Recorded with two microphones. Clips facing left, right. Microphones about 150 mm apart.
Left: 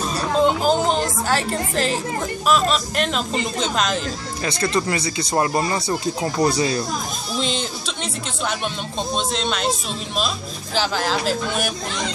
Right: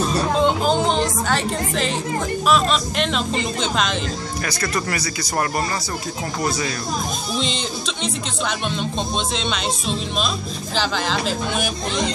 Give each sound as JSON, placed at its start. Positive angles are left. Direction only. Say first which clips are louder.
{"t": 0.4, "sound": "a woman's voice", "louder": "left 3 dB", "side_deg": 5}
{"t": 4.5, "sound": "speech", "louder": "left 4 dB", "side_deg": 25}
{"t": 7.3, "sound": "speech", "louder": "left 2 dB", "side_deg": 5}